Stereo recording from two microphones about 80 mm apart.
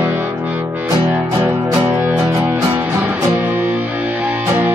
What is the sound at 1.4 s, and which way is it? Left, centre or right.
Music, right.